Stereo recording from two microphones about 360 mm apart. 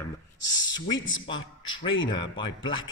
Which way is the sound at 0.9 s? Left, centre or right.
Left.